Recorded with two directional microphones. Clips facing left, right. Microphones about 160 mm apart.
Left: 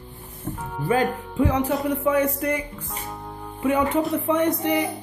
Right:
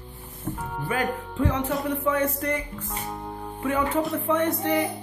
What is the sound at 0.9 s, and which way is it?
Music, 35° left (ahead or behind).